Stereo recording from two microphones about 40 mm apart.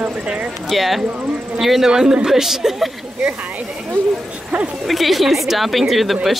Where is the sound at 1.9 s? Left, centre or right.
Centre.